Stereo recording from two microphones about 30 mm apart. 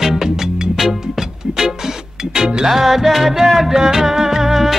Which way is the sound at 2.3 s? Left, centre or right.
Centre.